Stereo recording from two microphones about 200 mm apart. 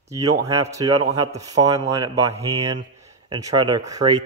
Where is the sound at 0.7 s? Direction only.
20° right (ahead or behind).